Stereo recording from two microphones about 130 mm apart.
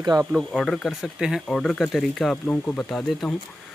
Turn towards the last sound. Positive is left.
turn(degrees=5)  # may be behind; listen again after turning